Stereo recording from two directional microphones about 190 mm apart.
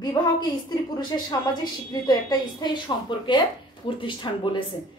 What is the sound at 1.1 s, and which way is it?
A woman's voice, 20° left (ahead or behind).